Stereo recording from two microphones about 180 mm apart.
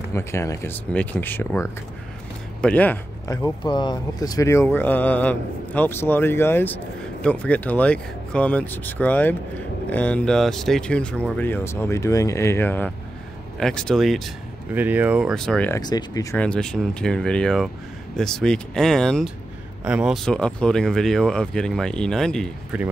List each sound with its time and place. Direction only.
0.1 s speech: 15° left (ahead or behind)
14.7 s speech: 10° right (ahead or behind)
15.7 s speech: 20° left (ahead or behind)
16.3 s speech: 5° left (ahead or behind)
20.2 s speech: 5° left (ahead or behind)